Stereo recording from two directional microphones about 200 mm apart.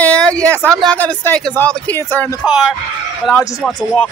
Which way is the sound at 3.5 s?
5° left (ahead or behind).